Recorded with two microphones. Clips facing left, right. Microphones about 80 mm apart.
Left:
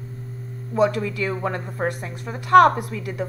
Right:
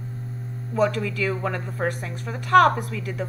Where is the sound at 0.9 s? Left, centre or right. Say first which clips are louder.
Left 1 dB; left.